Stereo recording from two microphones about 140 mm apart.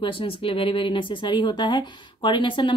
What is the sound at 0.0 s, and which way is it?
Speech, 40° left (ahead or behind).